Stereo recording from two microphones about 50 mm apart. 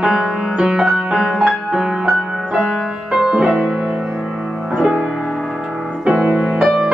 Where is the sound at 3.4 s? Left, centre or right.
Right.